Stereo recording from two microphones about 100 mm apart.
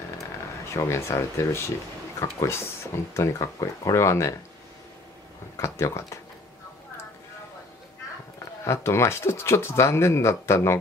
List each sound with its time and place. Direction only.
0.7 s speech: 30° left (ahead or behind)
5.6 s speech: 25° left (ahead or behind)
8.6 s speech: 25° left (ahead or behind)